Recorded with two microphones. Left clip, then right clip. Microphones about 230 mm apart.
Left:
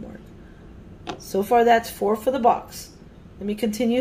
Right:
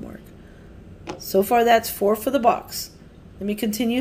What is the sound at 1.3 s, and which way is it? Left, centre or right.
Speech, right.